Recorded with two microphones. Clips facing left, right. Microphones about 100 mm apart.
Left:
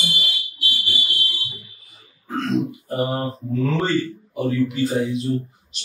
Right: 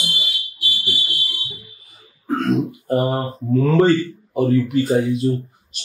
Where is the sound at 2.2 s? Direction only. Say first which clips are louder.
Right 3 dB; 50° right (ahead or behind).